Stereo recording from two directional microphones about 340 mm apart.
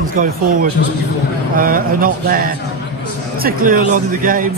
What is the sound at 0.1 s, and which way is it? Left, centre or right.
Speech, right.